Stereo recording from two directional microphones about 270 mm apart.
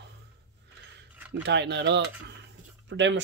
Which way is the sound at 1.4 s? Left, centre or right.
Right.